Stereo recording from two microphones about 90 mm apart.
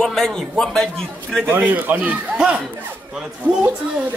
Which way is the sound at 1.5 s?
20° right (ahead or behind).